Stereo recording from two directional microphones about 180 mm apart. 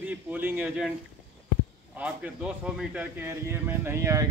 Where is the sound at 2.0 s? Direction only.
5° right (ahead or behind).